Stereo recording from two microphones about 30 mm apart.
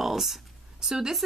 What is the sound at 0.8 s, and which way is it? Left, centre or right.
Speech, centre.